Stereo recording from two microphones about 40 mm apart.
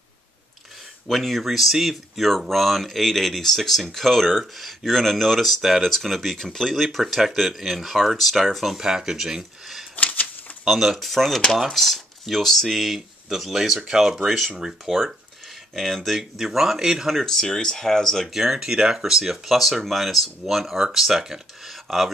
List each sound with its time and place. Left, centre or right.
1.0 s speech: centre
8.7 s speech: centre
9.9 s typewriter: left
10.7 s speech: centre
15.7 s speech: centre
16.2 s speech: centre
17.1 s speech: centre
18.3 s speech: centre